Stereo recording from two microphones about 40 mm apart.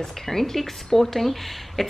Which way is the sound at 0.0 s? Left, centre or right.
Centre.